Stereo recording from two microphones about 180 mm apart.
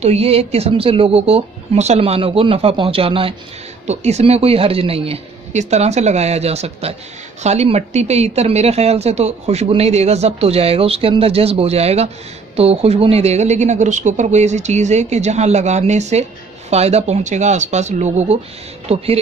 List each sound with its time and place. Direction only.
0.0 s speech: 35° right (ahead or behind)